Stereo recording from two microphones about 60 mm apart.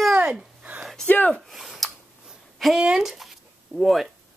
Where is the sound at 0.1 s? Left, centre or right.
Right.